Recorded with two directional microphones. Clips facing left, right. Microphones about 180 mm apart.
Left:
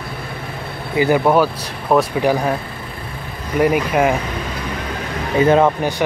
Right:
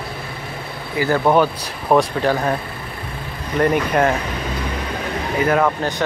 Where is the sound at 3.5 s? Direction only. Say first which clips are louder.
Left 1 dB; 5° left (ahead or behind).